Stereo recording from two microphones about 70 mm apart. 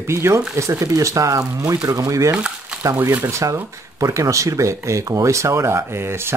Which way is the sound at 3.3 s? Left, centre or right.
Right.